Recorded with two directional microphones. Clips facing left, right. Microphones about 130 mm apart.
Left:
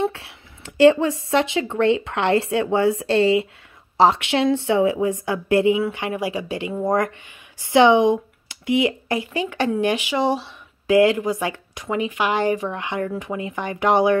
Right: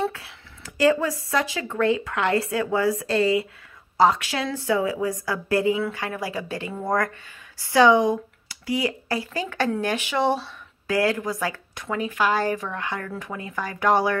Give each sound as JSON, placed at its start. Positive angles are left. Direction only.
{"t": 0.1, "sound": "speech", "side_deg": 30}